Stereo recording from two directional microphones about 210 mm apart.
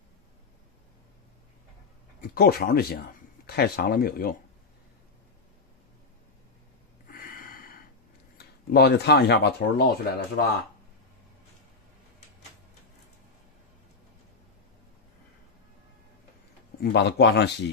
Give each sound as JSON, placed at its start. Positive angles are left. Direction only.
{"t": 2.2, "sound": "speech", "side_deg": 45}
{"t": 7.1, "sound": "a sound", "side_deg": 40}
{"t": 8.4, "sound": "speech", "side_deg": 50}
{"t": 16.9, "sound": "speech", "side_deg": 55}